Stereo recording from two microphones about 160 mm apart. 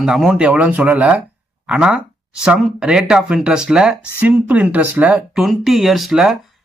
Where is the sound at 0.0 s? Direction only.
5° right (ahead or behind).